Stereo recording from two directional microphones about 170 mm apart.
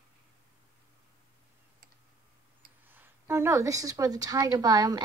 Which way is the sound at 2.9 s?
15° right (ahead or behind).